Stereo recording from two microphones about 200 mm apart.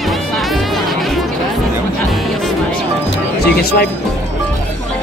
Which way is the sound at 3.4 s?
55° left (ahead or behind).